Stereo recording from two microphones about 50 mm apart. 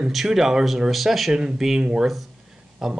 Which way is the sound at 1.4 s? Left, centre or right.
Centre.